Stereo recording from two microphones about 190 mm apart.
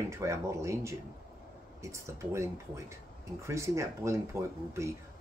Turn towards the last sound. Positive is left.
turn(degrees=-15)  # may be behind; listen again after turning